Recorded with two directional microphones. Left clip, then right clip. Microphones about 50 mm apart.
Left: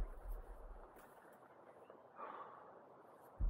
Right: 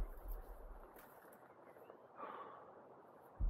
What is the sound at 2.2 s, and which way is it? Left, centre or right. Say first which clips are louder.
Snort: even; right.